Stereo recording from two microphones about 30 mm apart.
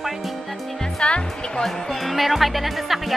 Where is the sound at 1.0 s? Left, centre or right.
Left.